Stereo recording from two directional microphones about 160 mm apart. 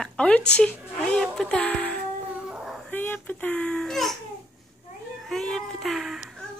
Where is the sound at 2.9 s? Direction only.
10° left (ahead or behind).